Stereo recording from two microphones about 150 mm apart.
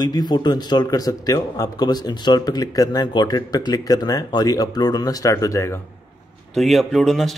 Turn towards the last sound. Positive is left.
turn(degrees=0)  # may be behind; listen again after turning